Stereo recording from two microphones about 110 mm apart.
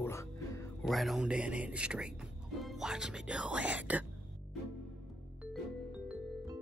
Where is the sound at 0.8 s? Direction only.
Centre (ahead or behind).